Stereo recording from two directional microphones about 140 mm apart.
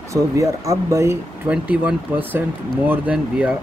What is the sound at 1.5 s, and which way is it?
Speech, 10° right (ahead or behind).